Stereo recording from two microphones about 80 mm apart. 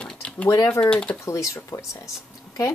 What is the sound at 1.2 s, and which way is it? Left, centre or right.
Speech, left.